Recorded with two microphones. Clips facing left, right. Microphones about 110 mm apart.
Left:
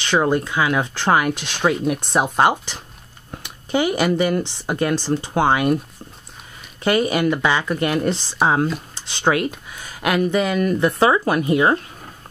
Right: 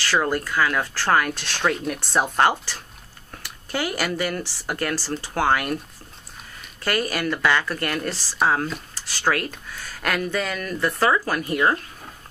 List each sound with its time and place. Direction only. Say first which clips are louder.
0.0 s speech: left 4 dB; 20° left (ahead or behind)
6.8 s speech: left 7 dB; 20° left (ahead or behind)